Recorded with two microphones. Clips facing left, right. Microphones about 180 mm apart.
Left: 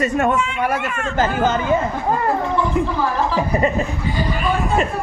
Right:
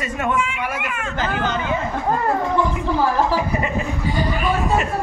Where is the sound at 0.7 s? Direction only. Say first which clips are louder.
Left 4 dB; 10° right (ahead or behind).